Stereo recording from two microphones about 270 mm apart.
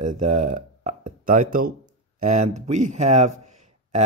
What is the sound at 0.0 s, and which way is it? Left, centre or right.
A man's voice, right.